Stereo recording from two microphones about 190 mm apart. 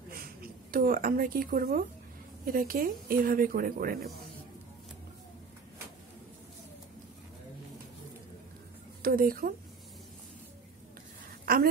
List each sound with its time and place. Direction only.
0.1 s a woman's voice: 50° right (ahead or behind)
9.0 s speech: 50° right (ahead or behind)